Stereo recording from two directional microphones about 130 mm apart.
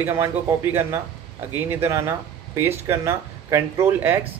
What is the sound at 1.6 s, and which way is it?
Speech, 15° right (ahead or behind).